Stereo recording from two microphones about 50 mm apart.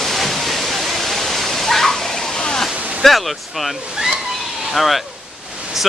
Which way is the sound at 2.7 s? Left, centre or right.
Right.